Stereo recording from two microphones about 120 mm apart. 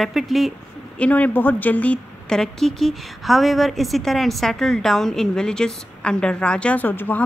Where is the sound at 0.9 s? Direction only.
10° left (ahead or behind).